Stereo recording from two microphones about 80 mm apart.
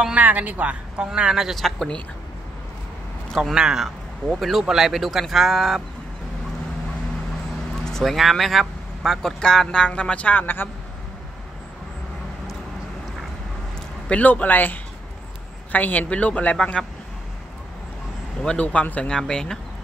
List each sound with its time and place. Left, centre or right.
0.0 s speech: centre
3.3 s a sound: centre
3.5 s speech: centre
7.8 s speech: centre; by 10.7 s left
14.0 s a man's voice: centre
18.4 s speech: centre